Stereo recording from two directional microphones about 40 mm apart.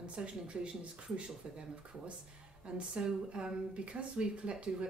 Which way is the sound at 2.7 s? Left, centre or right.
Right.